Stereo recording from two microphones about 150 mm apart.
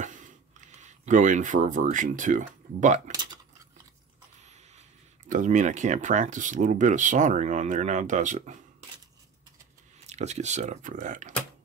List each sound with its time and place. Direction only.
0.7 s speech: 55° right (ahead or behind)
4.4 s a sound: 50° right (ahead or behind)
5.3 s speech: 55° right (ahead or behind)
10.0 s speech: 50° right (ahead or behind)